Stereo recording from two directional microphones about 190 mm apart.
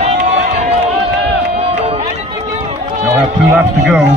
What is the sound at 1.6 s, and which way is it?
Run, 30° right (ahead or behind).